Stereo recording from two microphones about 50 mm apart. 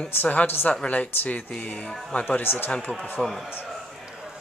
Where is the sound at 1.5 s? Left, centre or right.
Left.